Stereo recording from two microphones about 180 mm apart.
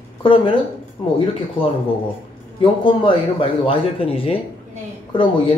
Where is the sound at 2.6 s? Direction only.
30° left (ahead or behind).